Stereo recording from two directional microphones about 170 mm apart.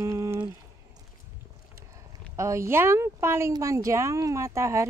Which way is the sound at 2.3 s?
15° right (ahead or behind).